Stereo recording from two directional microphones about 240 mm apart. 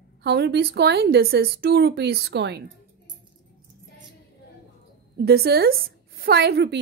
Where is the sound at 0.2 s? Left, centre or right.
Right.